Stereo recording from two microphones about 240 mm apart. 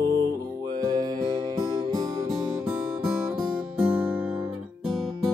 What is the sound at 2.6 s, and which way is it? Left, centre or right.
Guitar, centre.